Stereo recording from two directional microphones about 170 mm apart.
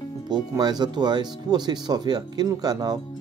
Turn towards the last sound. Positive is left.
turn(degrees=-25)  # may be behind; listen again after turning